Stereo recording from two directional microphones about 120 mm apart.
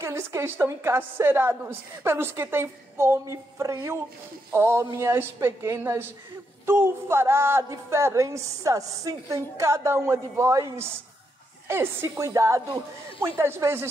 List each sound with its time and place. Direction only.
0.0 s speech: 20° right (ahead or behind)